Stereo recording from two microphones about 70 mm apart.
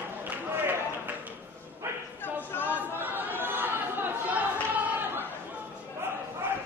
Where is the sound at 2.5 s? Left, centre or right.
Left.